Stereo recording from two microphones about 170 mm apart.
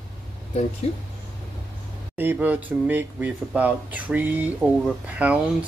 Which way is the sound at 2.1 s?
10° right (ahead or behind).